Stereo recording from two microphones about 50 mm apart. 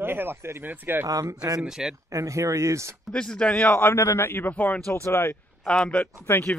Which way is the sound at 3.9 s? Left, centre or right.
Left.